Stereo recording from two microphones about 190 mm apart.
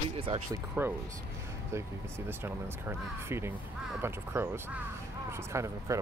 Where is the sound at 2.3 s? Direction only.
10° right (ahead or behind).